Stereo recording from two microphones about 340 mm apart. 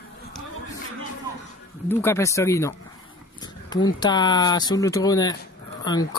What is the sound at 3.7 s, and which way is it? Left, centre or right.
Speech, centre.